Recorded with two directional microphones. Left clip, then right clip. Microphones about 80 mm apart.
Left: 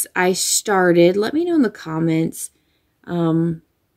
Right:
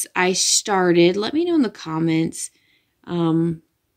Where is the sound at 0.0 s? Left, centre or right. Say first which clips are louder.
Left 1 dB; left.